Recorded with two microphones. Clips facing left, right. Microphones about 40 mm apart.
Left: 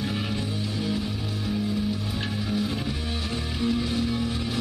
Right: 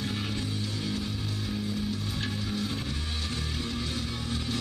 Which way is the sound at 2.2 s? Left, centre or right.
Centre.